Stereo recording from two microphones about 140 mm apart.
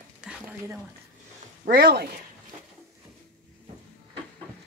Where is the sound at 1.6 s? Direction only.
90° right.